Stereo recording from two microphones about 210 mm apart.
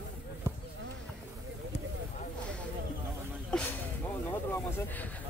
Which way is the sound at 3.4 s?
5° left (ahead or behind).